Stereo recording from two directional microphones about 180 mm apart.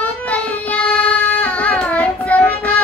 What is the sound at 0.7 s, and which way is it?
Child singing, 5° left (ahead or behind).